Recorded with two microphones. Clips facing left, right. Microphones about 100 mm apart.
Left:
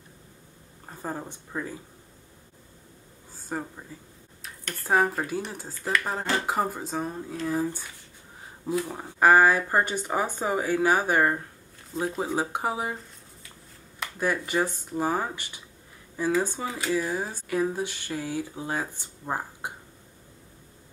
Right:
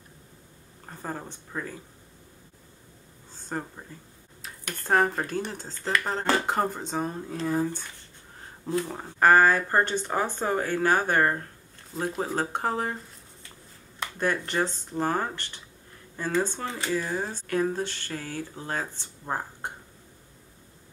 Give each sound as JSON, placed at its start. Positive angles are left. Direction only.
{"t": 0.8, "sound": "speech", "side_deg": 10}
{"t": 3.3, "sound": "a sound", "side_deg": 5}
{"t": 3.9, "sound": "a woman's voice", "side_deg": 5}